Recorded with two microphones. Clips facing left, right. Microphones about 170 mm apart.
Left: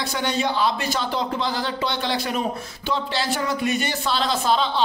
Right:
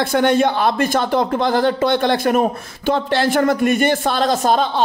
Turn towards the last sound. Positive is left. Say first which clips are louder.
# right 5 dB
turn(degrees=-50)  # may be behind; listen again after turning